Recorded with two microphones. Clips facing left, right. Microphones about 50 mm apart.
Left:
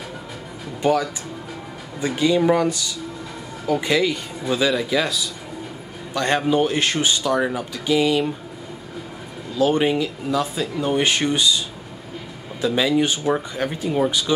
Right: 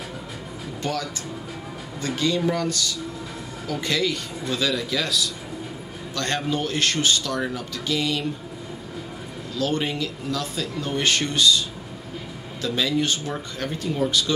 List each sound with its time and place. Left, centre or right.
0.8 s speech: centre
9.6 s speech: centre
12.6 s speech: centre